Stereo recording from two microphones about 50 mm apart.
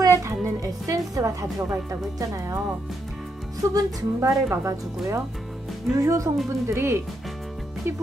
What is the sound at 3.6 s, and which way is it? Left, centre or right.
A woman's voice, right.